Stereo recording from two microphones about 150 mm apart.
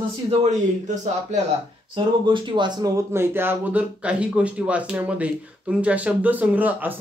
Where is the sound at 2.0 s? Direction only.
30° right (ahead or behind).